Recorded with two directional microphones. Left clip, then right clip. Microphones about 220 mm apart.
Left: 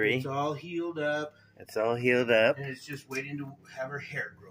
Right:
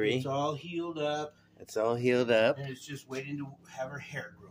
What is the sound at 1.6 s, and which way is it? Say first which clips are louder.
Speech: left 1 dB; centre (ahead or behind).